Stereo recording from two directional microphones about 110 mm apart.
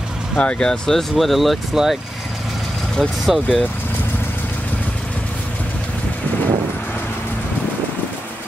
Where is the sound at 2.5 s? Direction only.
Centre (ahead or behind).